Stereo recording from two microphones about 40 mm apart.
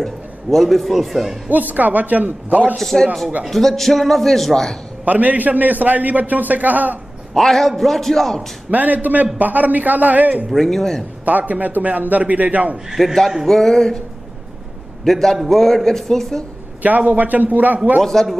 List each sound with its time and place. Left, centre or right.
0.0 s a man's voice: centre
1.5 s a man's voice: right
2.8 s a man's voice: centre
5.0 s a man's voice: right
7.3 s a man's voice: centre
8.6 s a man's voice: right
10.5 s a man's voice: centre
11.2 s a man's voice: right
13.0 s a man's voice: centre
15.0 s a man's voice: centre
16.8 s a man's voice: right
18.0 s a man's voice: centre